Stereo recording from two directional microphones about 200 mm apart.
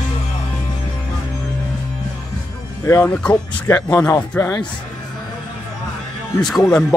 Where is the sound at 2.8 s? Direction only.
10° left (ahead or behind).